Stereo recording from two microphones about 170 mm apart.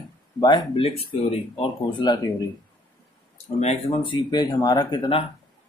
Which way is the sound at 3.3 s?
40° left (ahead or behind).